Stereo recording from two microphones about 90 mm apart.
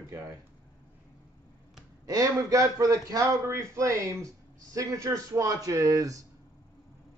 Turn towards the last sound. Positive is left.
turn(degrees=-40)  # may be behind; listen again after turning